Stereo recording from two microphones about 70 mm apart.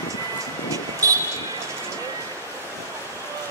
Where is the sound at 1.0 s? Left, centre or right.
Right.